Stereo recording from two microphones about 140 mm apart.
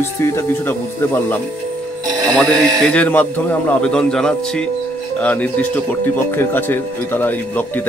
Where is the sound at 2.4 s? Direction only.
10° left (ahead or behind).